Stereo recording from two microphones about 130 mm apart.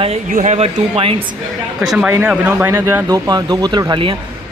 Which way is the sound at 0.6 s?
45° right (ahead or behind).